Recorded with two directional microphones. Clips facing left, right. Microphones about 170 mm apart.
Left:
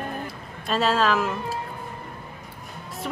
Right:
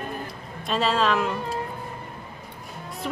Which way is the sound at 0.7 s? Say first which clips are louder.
Left 1 dB; centre (ahead or behind).